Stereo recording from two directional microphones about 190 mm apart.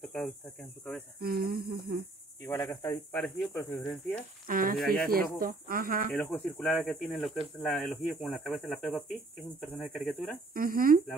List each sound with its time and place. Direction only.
0.0 s cricket: centre (ahead or behind)
1.2 s speech: 55° right (ahead or behind)
2.4 s speech: 15° left (ahead or behind)
4.1 s speech: 50° right (ahead or behind)
4.7 s insect: 5° left (ahead or behind)
5.1 s speech: 50° right (ahead or behind)
6.1 s insect: 10° left (ahead or behind)
10.5 s speech: 50° right (ahead or behind)